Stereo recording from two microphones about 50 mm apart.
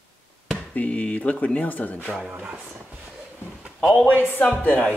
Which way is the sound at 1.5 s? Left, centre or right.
Left.